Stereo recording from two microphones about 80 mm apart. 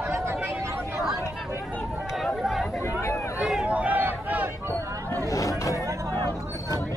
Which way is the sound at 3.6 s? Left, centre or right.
Centre.